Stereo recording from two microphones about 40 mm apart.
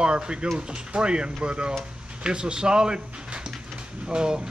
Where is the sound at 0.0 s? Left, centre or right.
Right.